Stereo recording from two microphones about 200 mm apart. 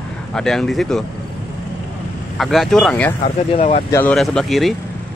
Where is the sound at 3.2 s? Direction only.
30° left (ahead or behind).